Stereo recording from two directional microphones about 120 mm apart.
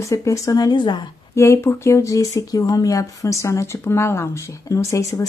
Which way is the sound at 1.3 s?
25° left (ahead or behind).